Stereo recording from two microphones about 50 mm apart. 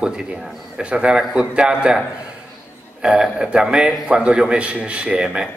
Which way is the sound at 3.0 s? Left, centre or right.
Centre.